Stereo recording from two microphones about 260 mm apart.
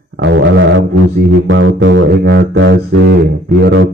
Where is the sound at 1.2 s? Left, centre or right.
Right.